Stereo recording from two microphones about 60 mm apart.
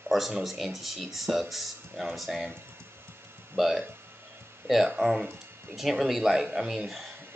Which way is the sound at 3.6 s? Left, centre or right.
Centre.